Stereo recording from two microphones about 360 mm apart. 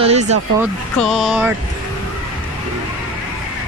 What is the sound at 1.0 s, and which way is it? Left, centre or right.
Speech, centre.